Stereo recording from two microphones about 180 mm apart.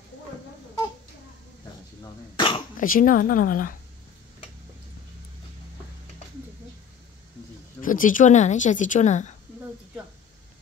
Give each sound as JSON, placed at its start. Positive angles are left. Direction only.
{"t": 2.3, "sound": "cough", "side_deg": 25}
{"t": 2.8, "sound": "speech", "side_deg": 50}
{"t": 7.8, "sound": "speech", "side_deg": 50}